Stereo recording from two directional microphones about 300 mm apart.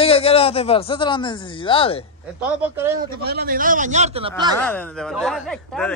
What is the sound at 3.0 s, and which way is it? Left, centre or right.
A man's voice, right.